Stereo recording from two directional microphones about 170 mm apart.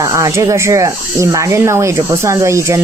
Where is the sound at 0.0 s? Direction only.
20° right (ahead or behind).